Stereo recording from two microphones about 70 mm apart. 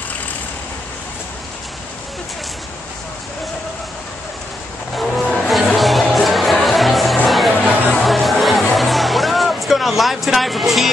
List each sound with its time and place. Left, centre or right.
4.9 s music: centre